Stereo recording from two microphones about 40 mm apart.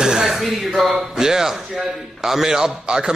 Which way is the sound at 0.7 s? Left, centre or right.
Centre.